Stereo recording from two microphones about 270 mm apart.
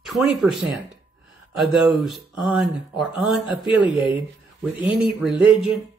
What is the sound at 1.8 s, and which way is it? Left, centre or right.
Speech, centre.